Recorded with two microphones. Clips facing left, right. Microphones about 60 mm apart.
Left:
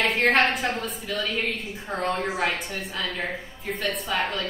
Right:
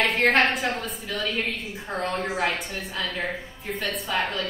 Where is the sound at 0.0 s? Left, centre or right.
Centre.